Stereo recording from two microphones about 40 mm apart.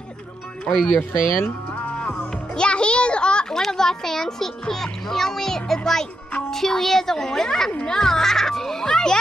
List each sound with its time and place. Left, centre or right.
0.7 s a child's voice: centre
1.1 s speech: left
2.1 s music: left
3.5 s a child's voice: centre